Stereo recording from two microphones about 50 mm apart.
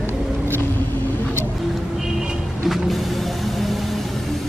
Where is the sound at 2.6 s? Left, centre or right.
Centre.